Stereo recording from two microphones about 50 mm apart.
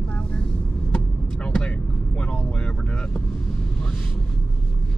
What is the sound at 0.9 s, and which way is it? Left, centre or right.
Vehicle, centre.